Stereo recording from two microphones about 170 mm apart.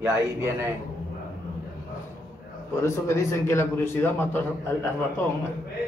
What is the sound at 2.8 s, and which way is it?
A man's voice, 15° left (ahead or behind).